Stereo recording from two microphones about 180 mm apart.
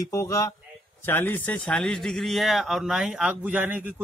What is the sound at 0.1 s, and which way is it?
A man's voice, 15° left (ahead or behind).